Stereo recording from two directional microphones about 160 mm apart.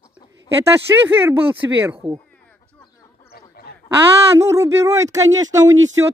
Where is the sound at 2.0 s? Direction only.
30° right (ahead or behind).